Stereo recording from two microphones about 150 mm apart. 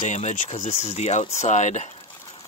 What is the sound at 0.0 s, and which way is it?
Speech, 50° left (ahead or behind).